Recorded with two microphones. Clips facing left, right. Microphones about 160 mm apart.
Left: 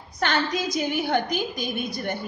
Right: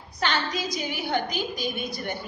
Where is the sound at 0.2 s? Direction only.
50° left (ahead or behind).